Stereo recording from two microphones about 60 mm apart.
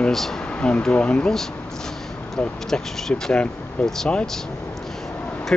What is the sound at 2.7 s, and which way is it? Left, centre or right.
Speech, centre.